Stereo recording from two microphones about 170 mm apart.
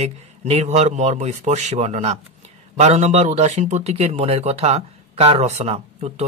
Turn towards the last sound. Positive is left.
turn(degrees=-40)  # may be behind; listen again after turning